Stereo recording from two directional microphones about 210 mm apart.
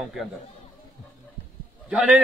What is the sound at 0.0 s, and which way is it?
Speech, centre (ahead or behind).